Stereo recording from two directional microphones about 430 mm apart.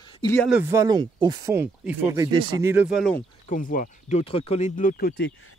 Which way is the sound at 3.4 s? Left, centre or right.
Centre.